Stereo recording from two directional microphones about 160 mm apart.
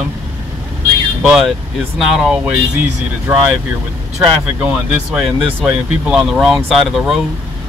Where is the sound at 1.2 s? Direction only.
5° right (ahead or behind).